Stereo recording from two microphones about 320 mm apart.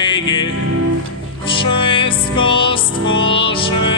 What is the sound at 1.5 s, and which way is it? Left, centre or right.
Music, centre.